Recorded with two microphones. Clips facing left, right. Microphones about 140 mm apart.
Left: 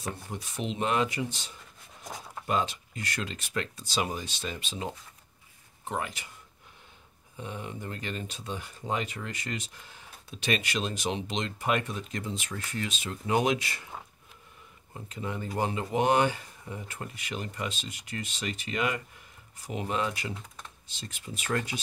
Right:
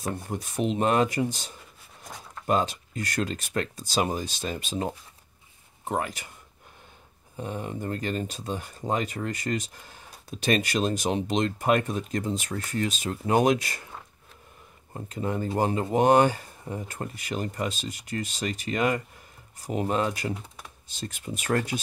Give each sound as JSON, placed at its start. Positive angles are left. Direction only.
{"t": 0.0, "sound": "speech", "side_deg": -45}
{"t": 7.3, "sound": "speech", "side_deg": -45}
{"t": 15.0, "sound": "speech", "side_deg": -45}